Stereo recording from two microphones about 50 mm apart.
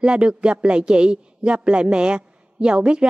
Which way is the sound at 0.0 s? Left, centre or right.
Centre.